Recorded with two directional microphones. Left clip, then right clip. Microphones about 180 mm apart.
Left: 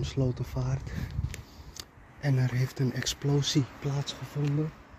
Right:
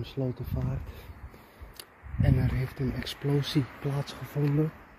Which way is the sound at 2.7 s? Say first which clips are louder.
Left 1 dB; 25° left (ahead or behind).